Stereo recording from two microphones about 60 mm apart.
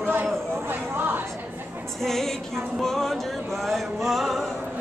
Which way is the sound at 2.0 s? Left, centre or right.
Centre.